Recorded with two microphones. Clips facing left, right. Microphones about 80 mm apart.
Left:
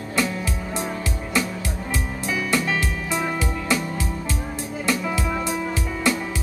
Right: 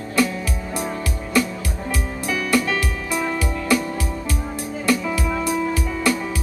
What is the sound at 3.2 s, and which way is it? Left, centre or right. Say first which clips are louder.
Music: right 2 dB; centre.